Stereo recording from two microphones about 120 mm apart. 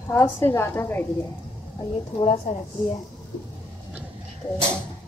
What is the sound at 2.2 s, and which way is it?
Speech, 65° left (ahead or behind).